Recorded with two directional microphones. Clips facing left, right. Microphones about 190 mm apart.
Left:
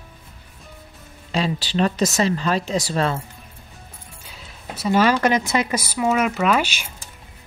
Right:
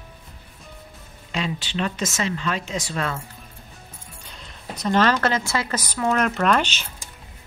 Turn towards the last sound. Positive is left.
turn(degrees=10)  # may be behind; listen again after turning